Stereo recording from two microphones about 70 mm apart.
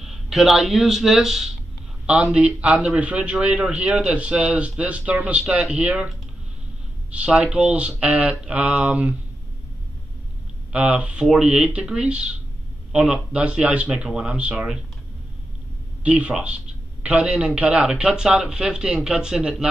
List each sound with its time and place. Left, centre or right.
0.0 s speech: centre
2.6 s a man's voice: centre
7.1 s a man's voice: centre
10.7 s a man's voice: centre
16.0 s a man's voice: centre